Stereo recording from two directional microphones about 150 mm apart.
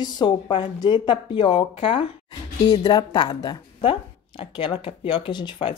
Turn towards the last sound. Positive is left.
turn(degrees=35)  # may be behind; listen again after turning